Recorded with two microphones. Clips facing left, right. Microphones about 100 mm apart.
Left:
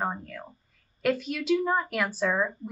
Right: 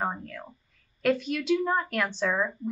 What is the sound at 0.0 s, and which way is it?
Speech, centre (ahead or behind).